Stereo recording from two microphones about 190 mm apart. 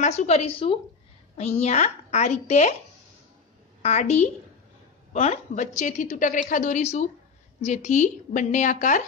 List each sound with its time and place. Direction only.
0.0 s a woman's voice: 35° left (ahead or behind)
3.8 s a woman's voice: 35° left (ahead or behind)